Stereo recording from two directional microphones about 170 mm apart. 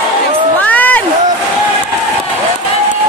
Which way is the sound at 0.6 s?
10° left (ahead or behind).